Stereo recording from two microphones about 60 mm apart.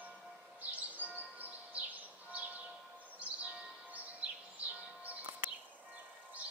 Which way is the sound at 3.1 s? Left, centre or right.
Right.